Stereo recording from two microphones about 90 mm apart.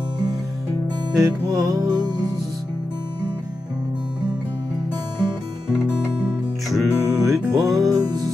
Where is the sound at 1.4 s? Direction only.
45° right (ahead or behind).